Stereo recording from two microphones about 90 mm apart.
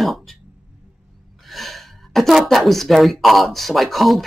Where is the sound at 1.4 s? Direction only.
Centre (ahead or behind).